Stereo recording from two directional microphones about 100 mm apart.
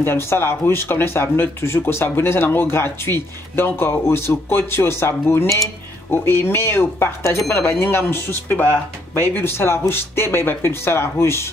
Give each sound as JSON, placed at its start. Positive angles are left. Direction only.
{"t": 0.0, "sound": "speech", "side_deg": 25}